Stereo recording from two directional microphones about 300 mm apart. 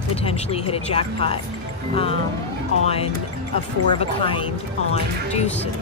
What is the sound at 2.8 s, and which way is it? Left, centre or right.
Speech, centre.